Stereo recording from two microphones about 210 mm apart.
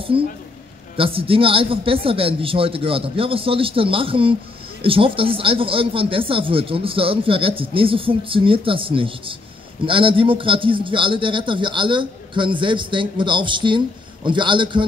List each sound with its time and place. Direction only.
0.1 s a man's voice: 25° right (ahead or behind)